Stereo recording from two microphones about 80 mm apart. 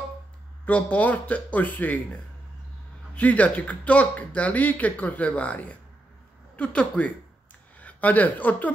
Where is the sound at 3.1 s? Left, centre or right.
Centre.